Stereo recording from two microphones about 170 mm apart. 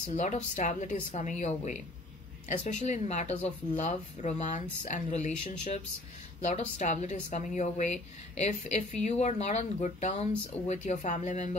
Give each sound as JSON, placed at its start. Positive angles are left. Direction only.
{"t": 0.1, "sound": "a woman's voice", "side_deg": 45}
{"t": 6.8, "sound": "a woman's voice", "side_deg": 45}